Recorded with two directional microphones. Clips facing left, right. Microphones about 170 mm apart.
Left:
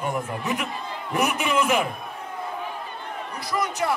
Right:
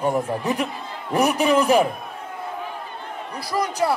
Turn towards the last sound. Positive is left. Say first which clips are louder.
# right 3 dB
turn(degrees=-35)  # may be behind; listen again after turning